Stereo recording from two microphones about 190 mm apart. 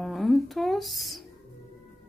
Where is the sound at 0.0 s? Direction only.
Centre (ahead or behind).